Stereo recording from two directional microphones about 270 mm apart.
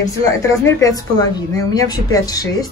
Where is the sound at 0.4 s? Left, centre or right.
Centre.